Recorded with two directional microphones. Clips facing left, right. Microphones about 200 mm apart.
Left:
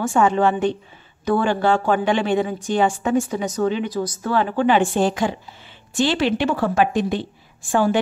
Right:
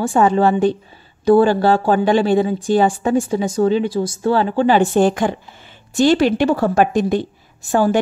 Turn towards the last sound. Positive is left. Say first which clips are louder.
# right 3 dB
turn(degrees=-40)  # may be behind; listen again after turning